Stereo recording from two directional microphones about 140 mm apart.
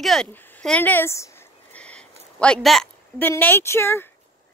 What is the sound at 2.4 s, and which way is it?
Speech, 5° left (ahead or behind).